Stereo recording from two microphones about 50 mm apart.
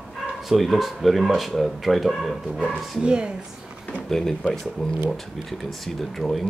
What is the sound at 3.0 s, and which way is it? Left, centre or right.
Speech, centre.